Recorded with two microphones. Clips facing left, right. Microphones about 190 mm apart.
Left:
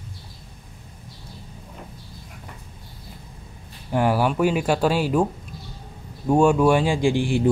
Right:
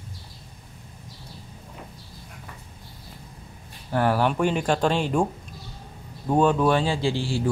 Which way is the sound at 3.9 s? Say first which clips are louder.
Left 2 dB; 10° left (ahead or behind).